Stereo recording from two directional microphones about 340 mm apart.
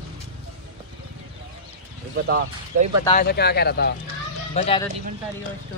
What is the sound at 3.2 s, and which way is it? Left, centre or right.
Speech, left.